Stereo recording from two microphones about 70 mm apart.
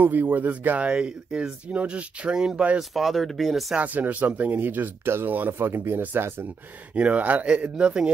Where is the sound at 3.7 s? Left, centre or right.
Right.